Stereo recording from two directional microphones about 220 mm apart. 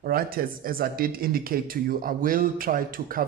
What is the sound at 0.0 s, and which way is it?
Speech, 40° right (ahead or behind).